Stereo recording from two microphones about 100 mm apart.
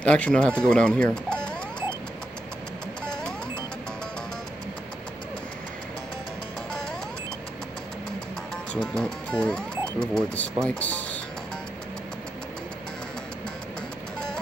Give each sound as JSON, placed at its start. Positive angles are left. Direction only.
{"t": 0.0, "sound": "speech", "side_deg": 10}
{"t": 8.9, "sound": "speech", "side_deg": 10}